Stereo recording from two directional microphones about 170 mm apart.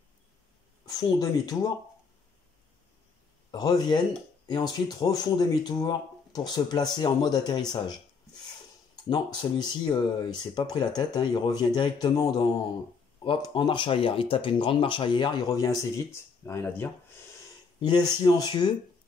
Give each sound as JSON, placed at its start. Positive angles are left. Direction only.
{"t": 0.8, "sound": "speech", "side_deg": 20}
{"t": 3.5, "sound": "speech", "side_deg": 25}
{"t": 9.1, "sound": "speech", "side_deg": 25}
{"t": 17.7, "sound": "speech", "side_deg": 25}